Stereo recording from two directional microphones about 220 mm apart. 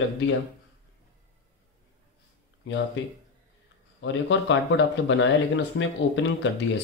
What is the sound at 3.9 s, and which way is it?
Speech, 55° left (ahead or behind).